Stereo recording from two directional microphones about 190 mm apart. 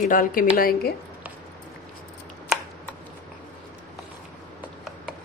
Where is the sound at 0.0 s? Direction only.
45° left (ahead or behind).